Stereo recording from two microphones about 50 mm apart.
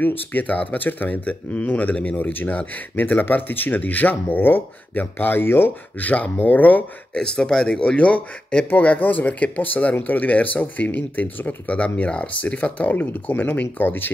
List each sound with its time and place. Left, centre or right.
0.0 s speech: left
5.9 s speech: left
7.2 s speech: centre; by 14.1 s left